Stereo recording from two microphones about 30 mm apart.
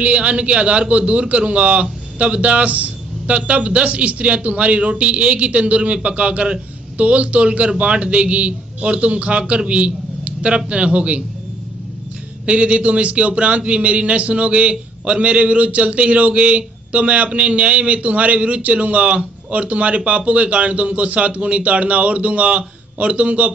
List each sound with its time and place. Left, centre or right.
0.0 s a man's voice: right
9.7 s a sound: right
10.7 s a man's voice: right
12.4 s a man's voice: right